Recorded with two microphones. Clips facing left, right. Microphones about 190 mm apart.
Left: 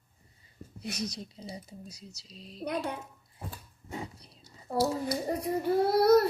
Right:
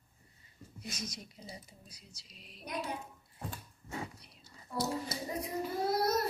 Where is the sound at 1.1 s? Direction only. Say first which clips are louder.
Left 7 dB; 30° left (ahead or behind).